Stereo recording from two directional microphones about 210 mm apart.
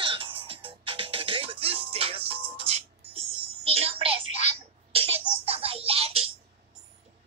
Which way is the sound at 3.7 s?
30° right (ahead or behind).